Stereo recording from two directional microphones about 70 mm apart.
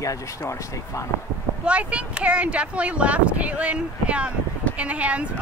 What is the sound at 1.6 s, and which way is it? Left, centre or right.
Speech, centre.